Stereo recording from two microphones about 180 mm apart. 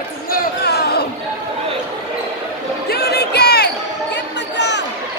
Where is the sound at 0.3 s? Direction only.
60° left (ahead or behind).